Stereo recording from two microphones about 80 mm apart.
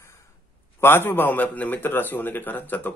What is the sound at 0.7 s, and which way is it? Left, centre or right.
A man's voice, left.